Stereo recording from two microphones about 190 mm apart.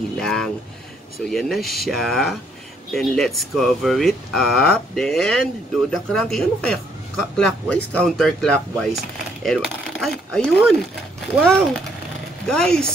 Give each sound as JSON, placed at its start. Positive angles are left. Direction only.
{"t": 0.2, "sound": "speech", "side_deg": 0}